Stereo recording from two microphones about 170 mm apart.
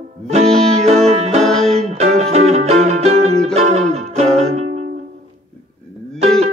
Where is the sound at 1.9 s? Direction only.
40° right (ahead or behind).